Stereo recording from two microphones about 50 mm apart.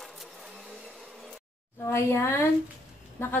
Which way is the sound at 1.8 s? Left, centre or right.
Left.